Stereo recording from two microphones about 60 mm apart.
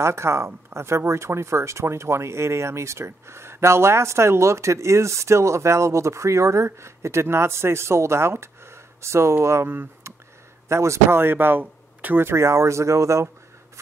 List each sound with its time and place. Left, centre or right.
0.0 s speech: right
10.7 s speech: right
11.6 s a sound: right
12.2 s speech: right